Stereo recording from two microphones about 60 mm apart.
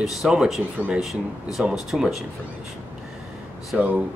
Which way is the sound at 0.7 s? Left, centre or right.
Right.